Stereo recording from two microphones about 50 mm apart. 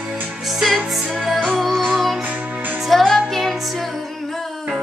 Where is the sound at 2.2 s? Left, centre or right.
Right.